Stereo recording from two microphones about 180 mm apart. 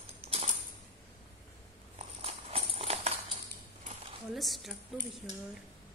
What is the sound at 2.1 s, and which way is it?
Clip-clop, 35° right (ahead or behind).